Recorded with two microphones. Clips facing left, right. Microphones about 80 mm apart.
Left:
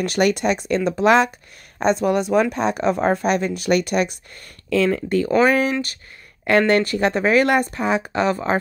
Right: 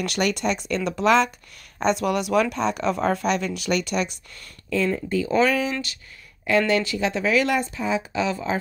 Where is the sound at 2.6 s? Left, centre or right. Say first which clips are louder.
Left 3 dB; left.